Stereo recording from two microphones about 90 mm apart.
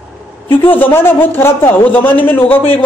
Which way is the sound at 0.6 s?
20° left (ahead or behind).